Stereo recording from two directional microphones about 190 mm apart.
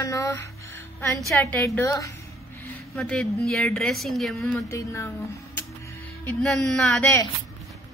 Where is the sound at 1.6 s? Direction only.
15° left (ahead or behind).